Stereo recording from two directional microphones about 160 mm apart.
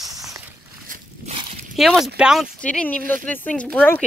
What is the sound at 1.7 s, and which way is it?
Speech, centre (ahead or behind).